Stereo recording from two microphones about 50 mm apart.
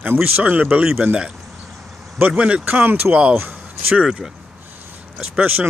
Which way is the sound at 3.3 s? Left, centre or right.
Right.